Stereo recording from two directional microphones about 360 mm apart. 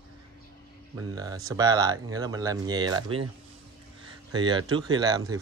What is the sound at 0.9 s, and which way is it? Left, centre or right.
Speech, centre.